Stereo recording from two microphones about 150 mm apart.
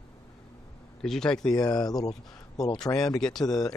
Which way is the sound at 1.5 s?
25° left (ahead or behind).